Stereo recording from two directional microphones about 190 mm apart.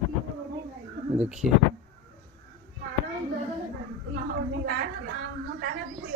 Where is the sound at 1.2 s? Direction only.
5° right (ahead or behind).